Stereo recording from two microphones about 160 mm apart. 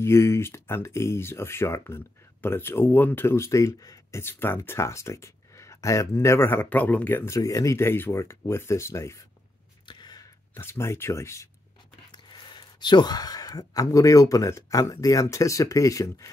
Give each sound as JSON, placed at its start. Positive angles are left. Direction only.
{"t": 0.0, "sound": "speech", "side_deg": 15}
{"t": 9.8, "sound": "a sound", "side_deg": 25}
{"t": 12.1, "sound": "speech", "side_deg": 30}